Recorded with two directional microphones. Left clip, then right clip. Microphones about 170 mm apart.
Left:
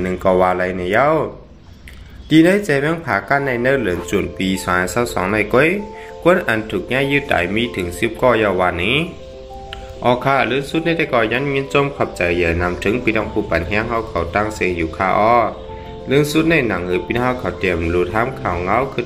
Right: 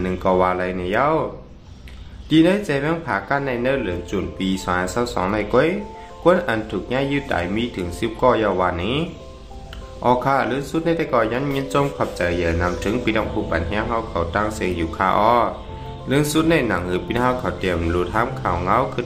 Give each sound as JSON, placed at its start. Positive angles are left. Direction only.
{"t": 0.0, "sound": "a man's voice", "side_deg": 10}
{"t": 2.2, "sound": "speech", "side_deg": 15}
{"t": 4.4, "sound": "a man's voice", "side_deg": 15}
{"t": 10.0, "sound": "a man's voice", "side_deg": 10}